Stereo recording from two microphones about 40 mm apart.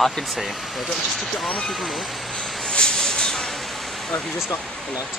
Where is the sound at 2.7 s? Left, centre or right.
Left.